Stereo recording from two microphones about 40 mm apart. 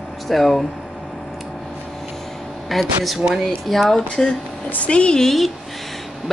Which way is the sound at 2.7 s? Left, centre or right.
Centre.